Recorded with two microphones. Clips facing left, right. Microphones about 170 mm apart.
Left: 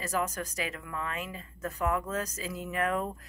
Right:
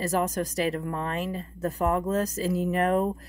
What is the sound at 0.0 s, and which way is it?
Speech, 35° right (ahead or behind).